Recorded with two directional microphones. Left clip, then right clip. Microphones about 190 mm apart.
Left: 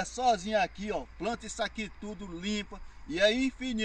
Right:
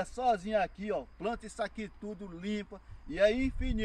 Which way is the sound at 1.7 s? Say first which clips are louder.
Left 3 dB; 40° right (ahead or behind).